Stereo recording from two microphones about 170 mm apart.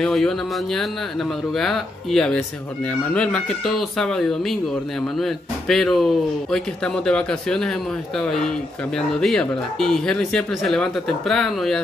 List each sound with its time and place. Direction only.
0.0 s speech: centre (ahead or behind)